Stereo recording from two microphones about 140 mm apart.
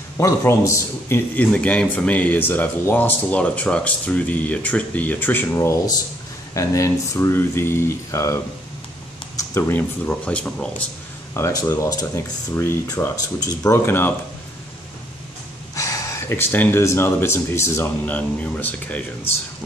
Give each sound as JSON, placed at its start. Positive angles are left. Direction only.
{"t": 0.2, "sound": "a man's voice", "side_deg": 20}
{"t": 9.4, "sound": "a man's voice", "side_deg": 20}
{"t": 11.3, "sound": "speech", "side_deg": 20}
{"t": 15.7, "sound": "a man's voice", "side_deg": 25}